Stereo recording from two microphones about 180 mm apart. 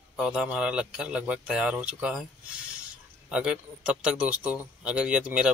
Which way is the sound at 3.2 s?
5° right (ahead or behind).